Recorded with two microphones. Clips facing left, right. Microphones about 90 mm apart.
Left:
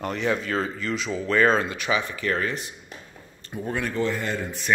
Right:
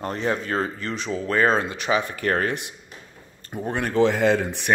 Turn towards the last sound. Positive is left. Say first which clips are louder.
# right 9 dB
turn(degrees=-75)  # may be behind; listen again after turning